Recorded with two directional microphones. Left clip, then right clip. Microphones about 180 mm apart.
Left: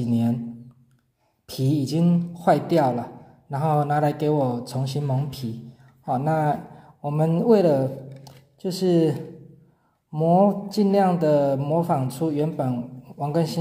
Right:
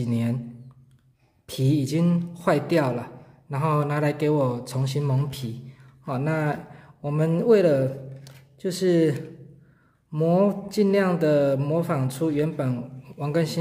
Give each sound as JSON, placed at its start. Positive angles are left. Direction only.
{"t": 0.1, "sound": "a man's voice", "side_deg": -15}
{"t": 1.5, "sound": "a man's voice", "side_deg": -15}
{"t": 10.1, "sound": "a man's voice", "side_deg": -20}